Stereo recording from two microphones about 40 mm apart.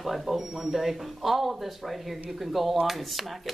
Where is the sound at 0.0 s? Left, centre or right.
Centre.